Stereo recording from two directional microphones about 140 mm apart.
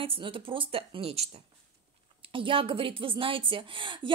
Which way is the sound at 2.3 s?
40° right (ahead or behind).